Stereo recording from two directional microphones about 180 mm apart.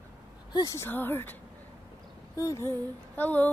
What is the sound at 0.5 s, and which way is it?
Speech, 20° left (ahead or behind).